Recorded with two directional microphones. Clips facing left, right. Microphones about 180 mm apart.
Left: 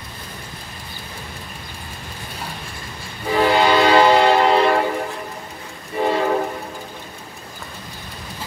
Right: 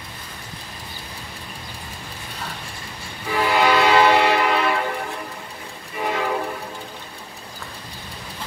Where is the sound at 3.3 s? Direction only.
30° left (ahead or behind).